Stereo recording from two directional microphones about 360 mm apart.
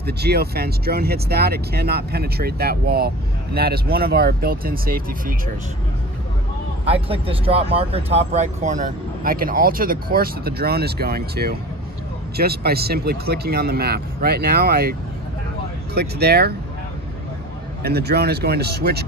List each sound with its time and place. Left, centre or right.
0.0 s speech: right
6.9 s speech: centre
17.8 s speech: right